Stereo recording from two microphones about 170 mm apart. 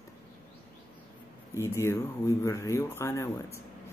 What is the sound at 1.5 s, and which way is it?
Speech, 15° left (ahead or behind).